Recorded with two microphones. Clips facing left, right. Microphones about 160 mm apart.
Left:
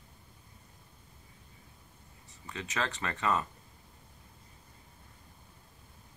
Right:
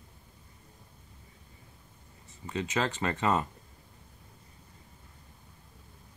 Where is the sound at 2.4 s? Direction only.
30° right (ahead or behind).